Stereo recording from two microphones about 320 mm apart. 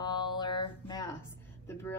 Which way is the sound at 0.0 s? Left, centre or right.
Centre.